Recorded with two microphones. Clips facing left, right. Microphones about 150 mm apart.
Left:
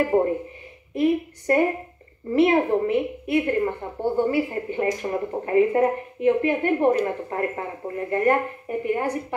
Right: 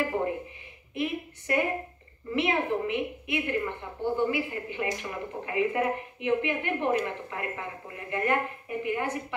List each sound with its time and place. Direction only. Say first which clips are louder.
0.1 s a woman's voice: left 9 dB; 40° left (ahead or behind)